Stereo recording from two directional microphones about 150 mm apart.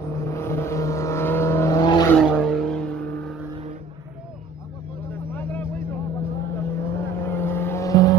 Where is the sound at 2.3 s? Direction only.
Centre (ahead or behind).